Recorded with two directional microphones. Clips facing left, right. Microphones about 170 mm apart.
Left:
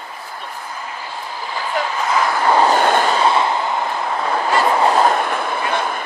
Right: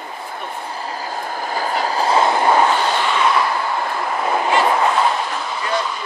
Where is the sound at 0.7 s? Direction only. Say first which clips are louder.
Right 3 dB; 35° right (ahead or behind).